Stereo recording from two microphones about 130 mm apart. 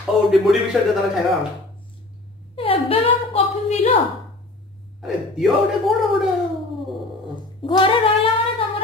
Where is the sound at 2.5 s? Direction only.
45° left (ahead or behind).